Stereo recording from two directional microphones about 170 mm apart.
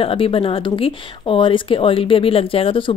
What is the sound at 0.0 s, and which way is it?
Speech, 30° left (ahead or behind).